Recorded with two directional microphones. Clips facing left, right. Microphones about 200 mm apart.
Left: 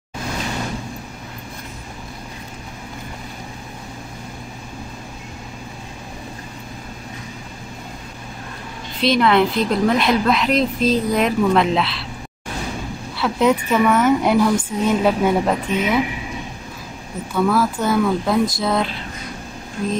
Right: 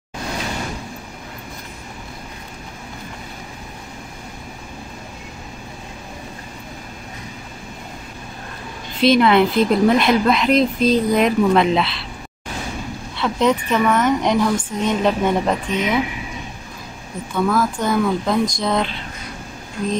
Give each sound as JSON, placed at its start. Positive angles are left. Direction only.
{"t": 9.0, "sound": "a woman's voice", "side_deg": 0}
{"t": 13.1, "sound": "a woman's voice", "side_deg": 5}
{"t": 17.3, "sound": "a woman's voice", "side_deg": 5}